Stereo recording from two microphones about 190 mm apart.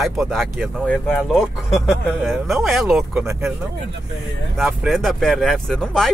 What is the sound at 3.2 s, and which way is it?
Speech, 15° right (ahead or behind).